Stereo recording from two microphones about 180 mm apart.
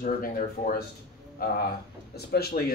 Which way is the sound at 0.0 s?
55° left (ahead or behind).